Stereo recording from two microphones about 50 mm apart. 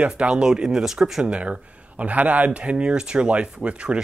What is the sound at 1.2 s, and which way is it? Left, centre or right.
Speech, right.